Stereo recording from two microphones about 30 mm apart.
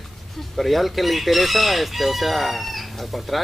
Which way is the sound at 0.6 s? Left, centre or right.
Centre.